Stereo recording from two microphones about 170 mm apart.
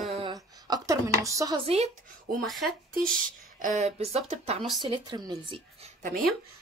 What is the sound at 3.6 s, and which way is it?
Speech, 45° right (ahead or behind).